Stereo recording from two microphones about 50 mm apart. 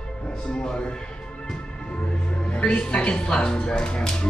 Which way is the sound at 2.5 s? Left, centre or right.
Left.